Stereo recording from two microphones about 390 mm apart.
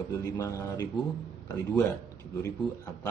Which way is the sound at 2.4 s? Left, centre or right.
Centre.